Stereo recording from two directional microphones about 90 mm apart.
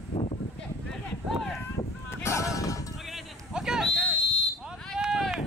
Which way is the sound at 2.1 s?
30° left (ahead or behind).